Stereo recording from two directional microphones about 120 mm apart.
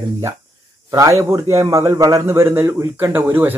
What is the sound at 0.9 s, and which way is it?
Speech, 25° right (ahead or behind).